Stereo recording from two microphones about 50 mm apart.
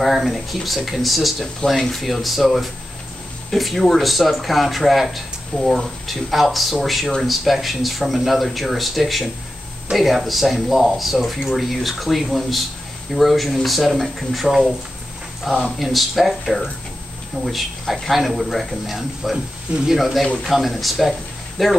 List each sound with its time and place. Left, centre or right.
0.0 s speech: centre